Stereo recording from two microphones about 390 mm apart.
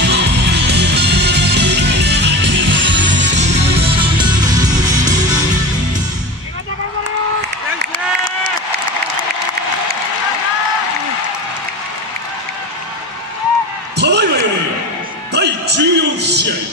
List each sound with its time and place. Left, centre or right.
0.0 s music: right; by 5.4 s centre
13.9 s a sound: right
15.3 s music: right